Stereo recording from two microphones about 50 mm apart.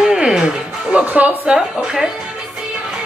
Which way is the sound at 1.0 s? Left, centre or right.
Right.